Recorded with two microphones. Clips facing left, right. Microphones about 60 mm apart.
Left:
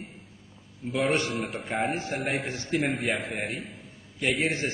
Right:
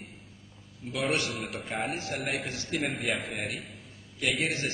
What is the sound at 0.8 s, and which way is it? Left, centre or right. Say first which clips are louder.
A man's voice: left 4 dB; centre.